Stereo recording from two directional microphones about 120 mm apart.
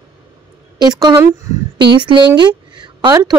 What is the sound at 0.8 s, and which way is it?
A woman's voice, 35° right (ahead or behind).